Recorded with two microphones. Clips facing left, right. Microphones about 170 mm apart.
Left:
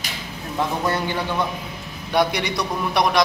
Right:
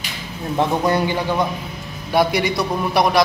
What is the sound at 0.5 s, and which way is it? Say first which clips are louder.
Speech: right 5 dB; 15° right (ahead or behind).